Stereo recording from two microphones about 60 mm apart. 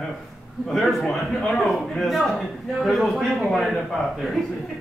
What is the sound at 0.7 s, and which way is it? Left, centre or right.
A man's voice, centre.